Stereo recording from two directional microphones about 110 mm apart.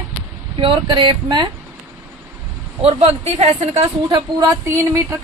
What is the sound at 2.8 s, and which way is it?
Speech, 65° right (ahead or behind).